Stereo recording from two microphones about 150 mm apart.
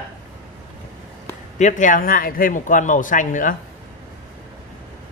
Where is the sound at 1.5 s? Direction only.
55° left (ahead or behind).